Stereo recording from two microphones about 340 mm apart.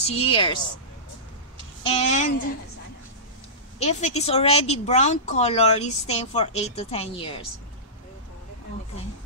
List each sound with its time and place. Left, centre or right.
0.0 s speech: centre
1.8 s speech: centre
3.8 s speech: centre